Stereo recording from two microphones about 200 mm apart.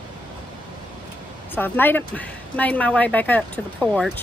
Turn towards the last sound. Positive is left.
turn(degrees=5)  # may be behind; listen again after turning